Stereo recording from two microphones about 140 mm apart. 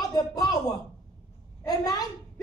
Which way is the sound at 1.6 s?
30° left (ahead or behind).